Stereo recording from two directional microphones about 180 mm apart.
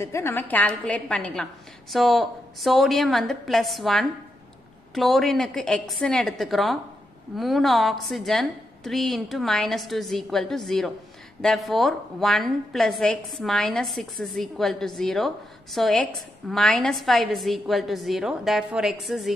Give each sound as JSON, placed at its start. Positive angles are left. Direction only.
{"t": 0.0, "sound": "a woman's voice", "side_deg": 15}